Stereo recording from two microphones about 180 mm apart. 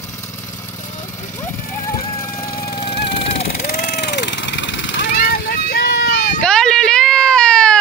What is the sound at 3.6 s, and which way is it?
Vehicle, 55° left (ahead or behind).